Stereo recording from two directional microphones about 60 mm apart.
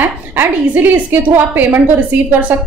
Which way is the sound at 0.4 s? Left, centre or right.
Right.